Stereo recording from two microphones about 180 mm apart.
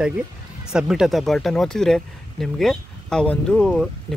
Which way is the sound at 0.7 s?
5° right (ahead or behind).